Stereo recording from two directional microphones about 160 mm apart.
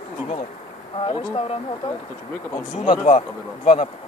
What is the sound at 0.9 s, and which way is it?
Speech, 35° left (ahead or behind).